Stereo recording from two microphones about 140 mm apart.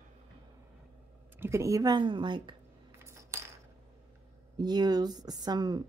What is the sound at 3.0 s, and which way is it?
Coin, 20° right (ahead or behind).